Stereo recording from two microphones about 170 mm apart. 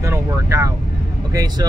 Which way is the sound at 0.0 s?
15° right (ahead or behind).